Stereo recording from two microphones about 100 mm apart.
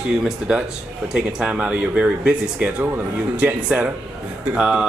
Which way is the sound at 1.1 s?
10° right (ahead or behind).